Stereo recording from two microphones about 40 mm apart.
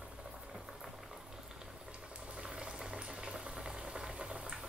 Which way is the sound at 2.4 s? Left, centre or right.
Right.